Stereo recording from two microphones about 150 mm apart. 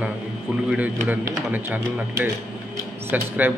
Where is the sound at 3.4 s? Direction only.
15° right (ahead or behind).